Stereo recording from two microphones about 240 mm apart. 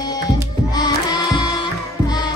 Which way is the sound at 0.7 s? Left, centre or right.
Centre.